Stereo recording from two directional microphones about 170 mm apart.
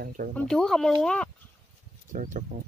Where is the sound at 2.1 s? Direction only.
50° right (ahead or behind).